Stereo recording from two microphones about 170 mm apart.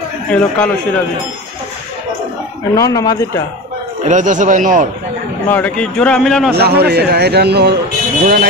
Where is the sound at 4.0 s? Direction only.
45° right (ahead or behind).